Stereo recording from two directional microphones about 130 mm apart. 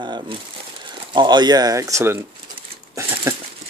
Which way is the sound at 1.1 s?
35° right (ahead or behind).